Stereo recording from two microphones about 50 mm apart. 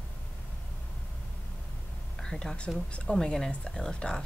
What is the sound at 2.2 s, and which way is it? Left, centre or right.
A woman's voice, centre.